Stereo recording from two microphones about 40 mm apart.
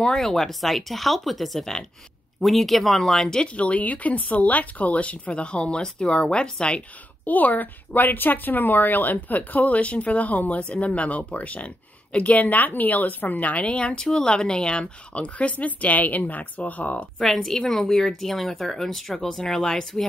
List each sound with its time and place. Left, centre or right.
0.0 s speech: centre
1.6 s speech: centre
2.4 s speech: centre
3.4 s speech: left
7.2 s a woman's voice: left
12.4 s a woman's voice: left
17.2 s speech: centre